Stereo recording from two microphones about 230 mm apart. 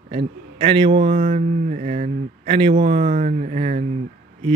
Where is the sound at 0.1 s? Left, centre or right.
Right.